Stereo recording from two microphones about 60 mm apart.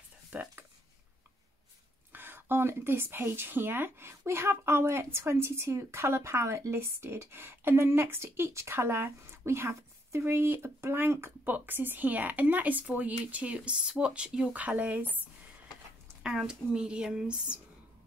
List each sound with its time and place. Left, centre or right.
0.3 s a sound: right
2.1 s a woman's voice: right
16.2 s speech: centre